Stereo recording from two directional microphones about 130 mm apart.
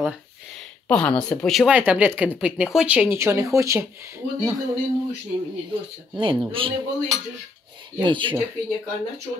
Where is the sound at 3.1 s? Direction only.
20° right (ahead or behind).